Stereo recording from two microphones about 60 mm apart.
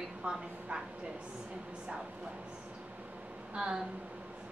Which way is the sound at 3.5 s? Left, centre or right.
Centre.